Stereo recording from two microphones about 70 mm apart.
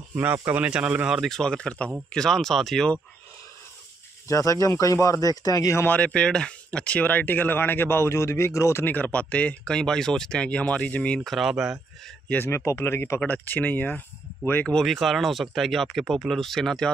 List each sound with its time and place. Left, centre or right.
0.1 s speech: right
0.6 s speech: centre
1.3 s speech: centre
4.3 s speech: left
5.3 s speech: left
5.9 s speech: centre; by 8.8 s left
8.8 s speech: left
11.1 s speech: centre
11.5 s speech: centre
12.4 s speech: left
13.2 s speech: left
14.7 s speech: centre